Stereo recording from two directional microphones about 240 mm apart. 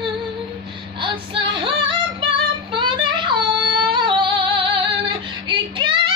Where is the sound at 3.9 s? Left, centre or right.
Centre.